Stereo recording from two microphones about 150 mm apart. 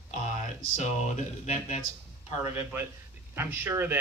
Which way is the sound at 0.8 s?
50° left (ahead or behind).